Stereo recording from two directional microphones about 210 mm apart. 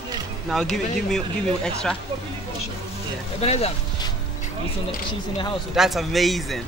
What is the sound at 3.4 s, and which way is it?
Speech, 30° left (ahead or behind).